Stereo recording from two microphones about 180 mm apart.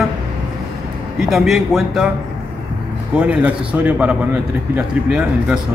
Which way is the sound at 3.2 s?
5° right (ahead or behind).